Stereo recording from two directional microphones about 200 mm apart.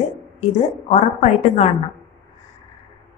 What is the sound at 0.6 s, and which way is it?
A woman's voice, 35° left (ahead or behind).